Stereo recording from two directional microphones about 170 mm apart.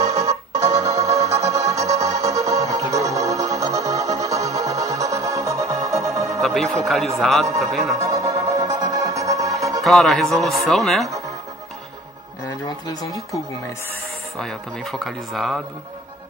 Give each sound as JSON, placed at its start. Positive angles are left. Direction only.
{"t": 0.0, "sound": "music", "side_deg": -20}
{"t": 6.4, "sound": "speech", "side_deg": 0}
{"t": 8.0, "sound": "music", "side_deg": -20}
{"t": 9.8, "sound": "speech", "side_deg": 0}
{"t": 11.1, "sound": "music", "side_deg": -20}
{"t": 14.4, "sound": "speech", "side_deg": 0}